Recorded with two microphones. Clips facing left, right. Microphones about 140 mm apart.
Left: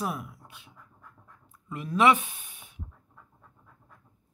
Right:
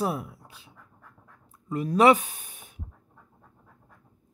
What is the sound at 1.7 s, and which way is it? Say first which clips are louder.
Speech: right 4 dB; 40° right (ahead or behind).